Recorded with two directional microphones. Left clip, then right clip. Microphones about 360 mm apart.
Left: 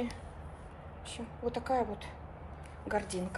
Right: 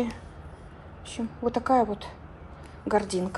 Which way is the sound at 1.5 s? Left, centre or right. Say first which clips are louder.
Right 9 dB; right.